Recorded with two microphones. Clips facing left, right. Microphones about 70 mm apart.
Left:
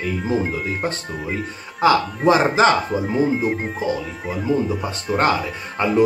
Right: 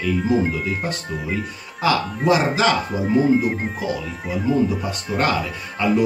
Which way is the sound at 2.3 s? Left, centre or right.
Left.